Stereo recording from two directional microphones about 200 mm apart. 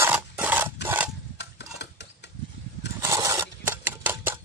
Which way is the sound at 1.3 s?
60° left (ahead or behind).